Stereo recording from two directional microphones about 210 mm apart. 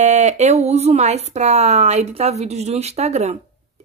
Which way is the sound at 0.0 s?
30° right (ahead or behind).